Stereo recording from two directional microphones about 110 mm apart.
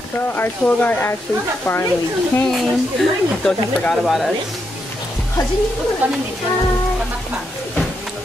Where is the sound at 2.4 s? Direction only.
5° left (ahead or behind).